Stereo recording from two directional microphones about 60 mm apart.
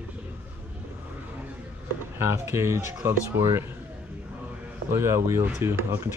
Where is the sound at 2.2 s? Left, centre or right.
Right.